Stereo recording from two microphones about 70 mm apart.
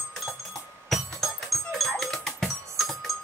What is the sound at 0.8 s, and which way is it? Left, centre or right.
Music, centre.